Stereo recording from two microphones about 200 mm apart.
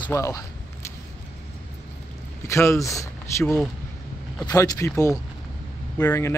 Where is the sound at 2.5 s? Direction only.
15° left (ahead or behind).